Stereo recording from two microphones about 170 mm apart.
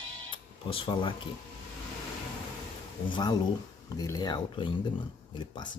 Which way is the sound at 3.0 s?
25° left (ahead or behind).